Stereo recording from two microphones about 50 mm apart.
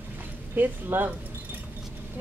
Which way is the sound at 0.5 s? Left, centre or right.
Right.